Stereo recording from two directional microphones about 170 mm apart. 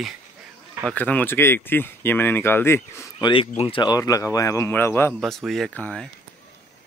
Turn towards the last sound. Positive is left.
turn(degrees=5)  # may be behind; listen again after turning